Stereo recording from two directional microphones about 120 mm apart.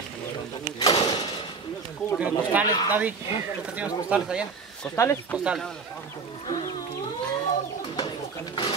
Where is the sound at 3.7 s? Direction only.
10° right (ahead or behind).